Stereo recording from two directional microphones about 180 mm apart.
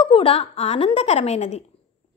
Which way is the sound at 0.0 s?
30° left (ahead or behind).